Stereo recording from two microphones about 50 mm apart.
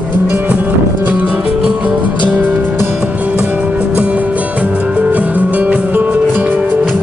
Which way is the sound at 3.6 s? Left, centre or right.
Right.